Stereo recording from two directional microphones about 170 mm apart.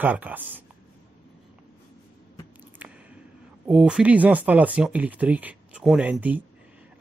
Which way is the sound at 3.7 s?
5° right (ahead or behind).